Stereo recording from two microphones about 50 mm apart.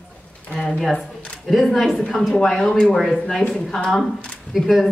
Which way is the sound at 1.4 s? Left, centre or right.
Centre.